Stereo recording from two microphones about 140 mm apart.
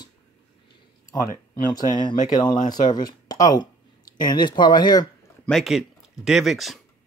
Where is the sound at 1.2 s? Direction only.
25° left (ahead or behind).